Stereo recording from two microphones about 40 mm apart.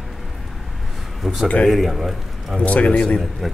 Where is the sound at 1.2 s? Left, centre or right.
Centre.